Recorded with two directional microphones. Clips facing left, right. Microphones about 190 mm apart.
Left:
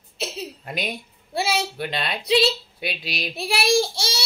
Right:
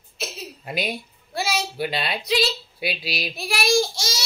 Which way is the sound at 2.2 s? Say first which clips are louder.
Left 5 dB; 30° left (ahead or behind).